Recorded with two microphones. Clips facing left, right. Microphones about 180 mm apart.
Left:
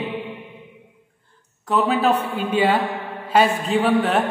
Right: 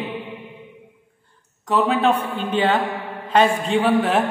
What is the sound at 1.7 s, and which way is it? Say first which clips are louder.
A man's voice: even; centre (ahead or behind).